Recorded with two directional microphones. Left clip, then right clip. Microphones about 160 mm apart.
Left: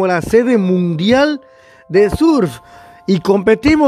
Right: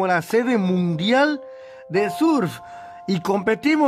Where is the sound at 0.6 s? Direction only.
20° left (ahead or behind).